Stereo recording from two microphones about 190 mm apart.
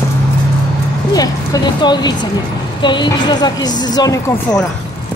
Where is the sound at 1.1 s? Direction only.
20° left (ahead or behind).